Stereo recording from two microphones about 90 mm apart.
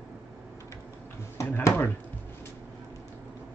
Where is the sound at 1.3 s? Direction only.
35° left (ahead or behind).